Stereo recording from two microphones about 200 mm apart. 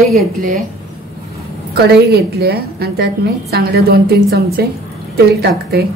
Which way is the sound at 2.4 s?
50° right (ahead or behind).